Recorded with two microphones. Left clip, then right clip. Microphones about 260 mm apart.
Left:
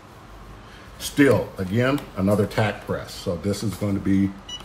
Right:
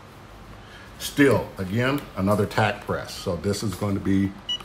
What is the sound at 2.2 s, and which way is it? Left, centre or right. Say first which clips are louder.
Speech: even; centre.